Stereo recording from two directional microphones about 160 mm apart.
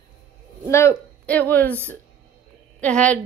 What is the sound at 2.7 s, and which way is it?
Speech, 5° left (ahead or behind).